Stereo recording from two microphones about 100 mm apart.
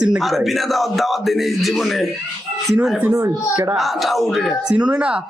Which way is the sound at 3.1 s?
30° right (ahead or behind).